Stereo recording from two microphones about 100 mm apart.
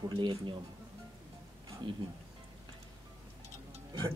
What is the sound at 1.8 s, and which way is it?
Speech, 55° right (ahead or behind).